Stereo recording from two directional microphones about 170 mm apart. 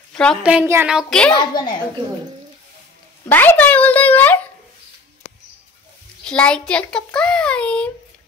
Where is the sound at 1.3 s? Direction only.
25° left (ahead or behind).